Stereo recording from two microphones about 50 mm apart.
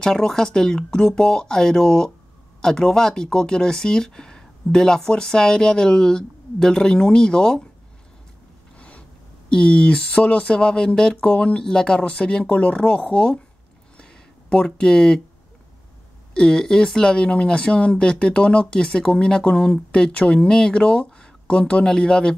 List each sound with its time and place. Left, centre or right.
0.0 s speech: centre
8.7 s a sound: left
9.5 s speech: centre
11.6 s speech: centre; by 13.4 s left
13.9 s a sound: left
16.3 s speech: centre